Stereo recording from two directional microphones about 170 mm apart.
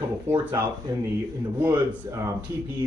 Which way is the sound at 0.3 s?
15° right (ahead or behind).